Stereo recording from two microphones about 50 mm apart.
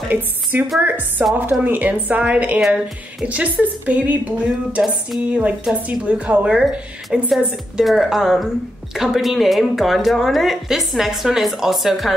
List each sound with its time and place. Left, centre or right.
0.1 s a woman's voice: right
5.9 s a woman's voice: right
7.1 s speech: centre